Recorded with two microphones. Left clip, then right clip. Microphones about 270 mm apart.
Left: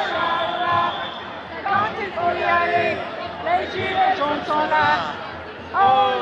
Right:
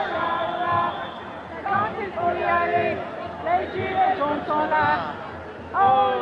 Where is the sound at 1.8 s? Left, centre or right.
Centre.